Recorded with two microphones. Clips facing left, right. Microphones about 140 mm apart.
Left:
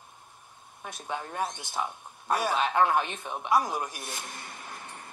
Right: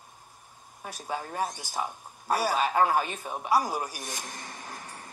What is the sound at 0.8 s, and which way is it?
Speech, 5° right (ahead or behind).